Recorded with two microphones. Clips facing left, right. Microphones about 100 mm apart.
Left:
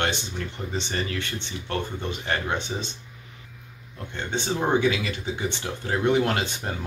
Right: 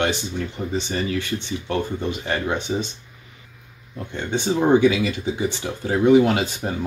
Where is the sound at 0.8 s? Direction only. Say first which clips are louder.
Right 5 dB; 10° right (ahead or behind).